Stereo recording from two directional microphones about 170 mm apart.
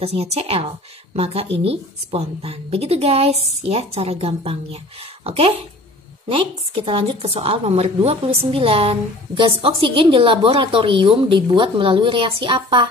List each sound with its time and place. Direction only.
0.0 s a woman's voice: 35° right (ahead or behind)